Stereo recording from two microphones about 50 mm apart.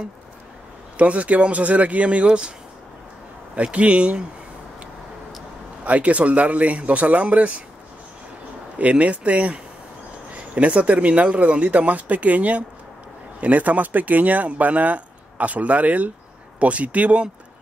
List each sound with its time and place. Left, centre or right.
0.9 s speech: right
3.5 s speech: right
5.9 s speech: right
8.7 s speech: right